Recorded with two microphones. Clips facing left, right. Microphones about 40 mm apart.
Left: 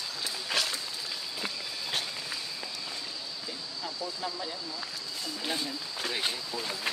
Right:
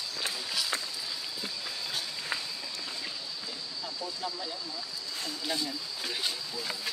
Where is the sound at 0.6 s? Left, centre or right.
Left.